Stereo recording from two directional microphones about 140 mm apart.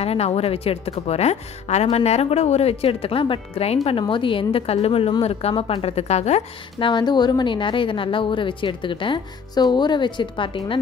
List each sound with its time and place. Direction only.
0.0 s a woman's voice: 45° left (ahead or behind)
6.8 s a woman's voice: 35° left (ahead or behind)